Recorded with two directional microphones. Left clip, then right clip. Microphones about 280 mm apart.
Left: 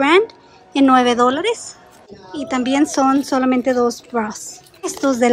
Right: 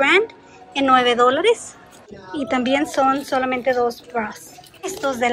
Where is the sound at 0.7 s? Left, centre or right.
Centre.